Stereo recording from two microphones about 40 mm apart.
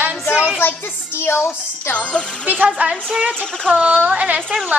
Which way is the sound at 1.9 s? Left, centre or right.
Left.